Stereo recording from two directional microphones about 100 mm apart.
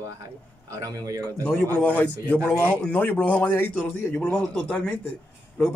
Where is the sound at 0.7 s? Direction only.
35° right (ahead or behind).